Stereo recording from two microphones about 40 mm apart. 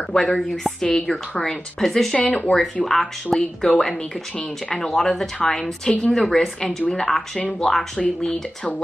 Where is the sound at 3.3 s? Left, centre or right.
Centre.